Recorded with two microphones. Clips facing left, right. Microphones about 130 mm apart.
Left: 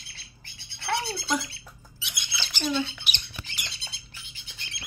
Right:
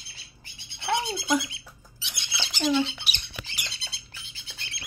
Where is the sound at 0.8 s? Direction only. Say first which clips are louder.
Right 2 dB; 20° right (ahead or behind).